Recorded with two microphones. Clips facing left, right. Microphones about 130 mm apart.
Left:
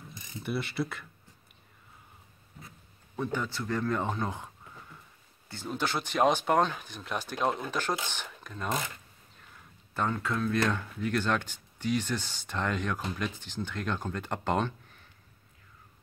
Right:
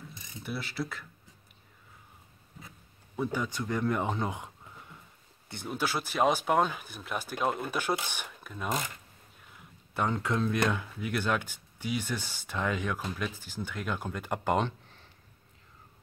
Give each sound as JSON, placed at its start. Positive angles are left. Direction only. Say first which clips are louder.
{"t": 0.4, "sound": "speech", "louder": "left 3 dB", "side_deg": 0}
{"t": 3.2, "sound": "speech", "louder": "right 1 dB", "side_deg": -10}
{"t": 5.5, "sound": "speech", "louder": "even", "side_deg": -10}
{"t": 9.9, "sound": "speech", "louder": "right 1 dB", "side_deg": -15}
{"t": 10.7, "sound": "speech", "louder": "left 2 dB", "side_deg": -10}